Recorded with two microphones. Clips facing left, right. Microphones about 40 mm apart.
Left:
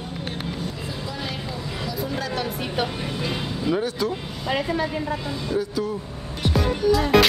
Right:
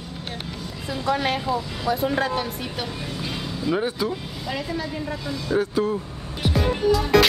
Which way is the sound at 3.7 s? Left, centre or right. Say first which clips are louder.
Right 1 dB; centre.